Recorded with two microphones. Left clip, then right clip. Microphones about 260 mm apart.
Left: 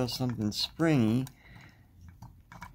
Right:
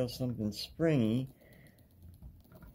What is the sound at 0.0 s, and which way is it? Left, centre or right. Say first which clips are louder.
Speech: left 3 dB; left.